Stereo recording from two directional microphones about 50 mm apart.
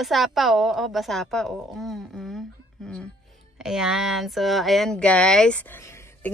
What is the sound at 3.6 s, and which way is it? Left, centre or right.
A woman's voice, centre.